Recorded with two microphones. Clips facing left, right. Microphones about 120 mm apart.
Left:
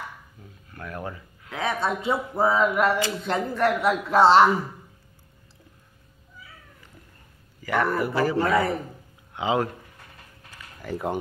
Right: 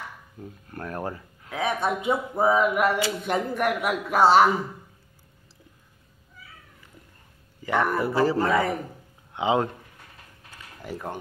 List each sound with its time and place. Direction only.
0.4 s speech: 40° right (ahead or behind)
1.6 s speech: 15° right (ahead or behind)
7.6 s speech: 20° right (ahead or behind)
10.8 s speech: 20° right (ahead or behind)